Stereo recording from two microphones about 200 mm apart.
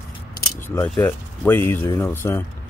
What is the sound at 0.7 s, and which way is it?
Speech, 10° left (ahead or behind).